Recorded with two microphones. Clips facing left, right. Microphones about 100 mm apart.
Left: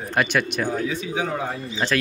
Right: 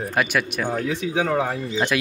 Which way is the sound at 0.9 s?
80° right.